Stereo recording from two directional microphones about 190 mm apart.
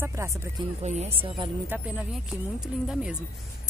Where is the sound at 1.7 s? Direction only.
5° right (ahead or behind).